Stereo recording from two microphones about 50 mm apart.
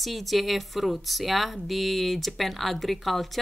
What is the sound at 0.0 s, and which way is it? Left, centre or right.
Speech, centre.